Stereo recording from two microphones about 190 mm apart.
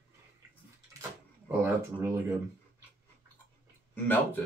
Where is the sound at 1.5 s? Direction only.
15° right (ahead or behind).